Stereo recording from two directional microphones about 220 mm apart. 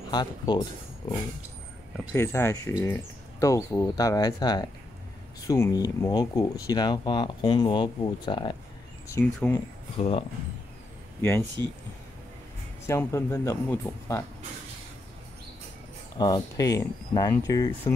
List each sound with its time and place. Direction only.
0.1 s speech: 20° left (ahead or behind)
2.1 s speech: 10° left (ahead or behind)
9.1 s speech: 10° left (ahead or behind)
9.9 s speech: 25° left (ahead or behind)
11.1 s speech: 10° left (ahead or behind)
12.8 s speech: 15° left (ahead or behind)
16.2 s speech: 20° left (ahead or behind)